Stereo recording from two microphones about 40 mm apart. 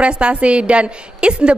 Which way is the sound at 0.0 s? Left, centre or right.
Right.